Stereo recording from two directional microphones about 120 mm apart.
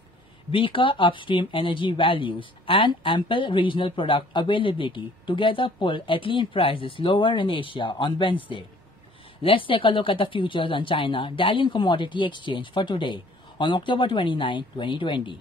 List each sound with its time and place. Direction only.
0.5 s speech: 45° left (ahead or behind)
9.4 s speech: 50° left (ahead or behind)